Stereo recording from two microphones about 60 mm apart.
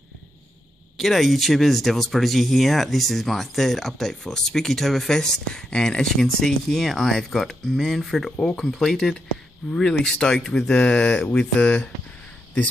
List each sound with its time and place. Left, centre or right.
0.9 s speech: centre; by 11.9 s left